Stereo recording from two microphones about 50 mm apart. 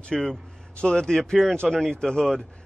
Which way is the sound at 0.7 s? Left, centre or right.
Centre.